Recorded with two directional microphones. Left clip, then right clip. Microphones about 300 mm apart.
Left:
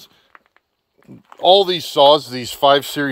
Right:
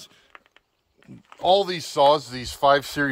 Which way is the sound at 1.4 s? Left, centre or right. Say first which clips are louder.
Left 7 dB; left.